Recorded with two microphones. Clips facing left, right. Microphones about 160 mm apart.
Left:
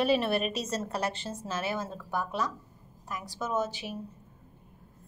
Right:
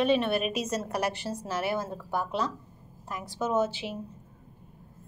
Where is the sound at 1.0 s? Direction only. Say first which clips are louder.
Right 3 dB; 25° left (ahead or behind).